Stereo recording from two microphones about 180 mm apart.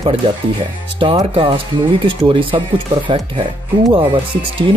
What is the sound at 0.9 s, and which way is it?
Speech, 30° right (ahead or behind).